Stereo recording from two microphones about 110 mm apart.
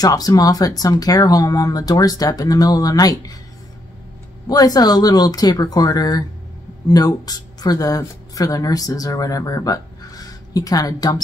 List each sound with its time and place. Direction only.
0.0 s speech: 35° left (ahead or behind)
4.5 s speech: 35° left (ahead or behind)